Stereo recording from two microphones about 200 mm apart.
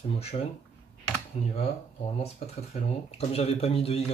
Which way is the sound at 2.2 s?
30° left (ahead or behind).